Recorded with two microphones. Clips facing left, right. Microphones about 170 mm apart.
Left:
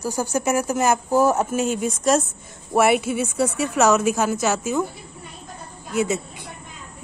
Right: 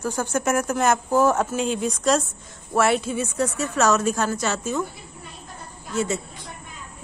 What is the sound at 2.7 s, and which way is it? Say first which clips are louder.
Speech: left 3 dB; 10° left (ahead or behind).